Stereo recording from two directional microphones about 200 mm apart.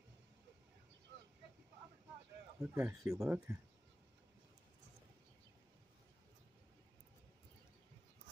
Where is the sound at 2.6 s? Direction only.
15° right (ahead or behind).